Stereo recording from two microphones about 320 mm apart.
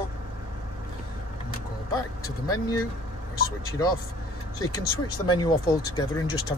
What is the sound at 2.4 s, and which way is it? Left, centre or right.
Speech, centre.